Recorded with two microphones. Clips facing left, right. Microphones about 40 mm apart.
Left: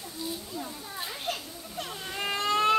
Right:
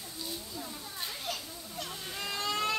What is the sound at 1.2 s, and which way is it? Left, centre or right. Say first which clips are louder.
Children playing: left 4 dB; left.